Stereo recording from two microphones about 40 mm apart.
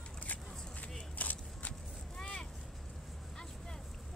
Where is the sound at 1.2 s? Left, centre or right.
Left.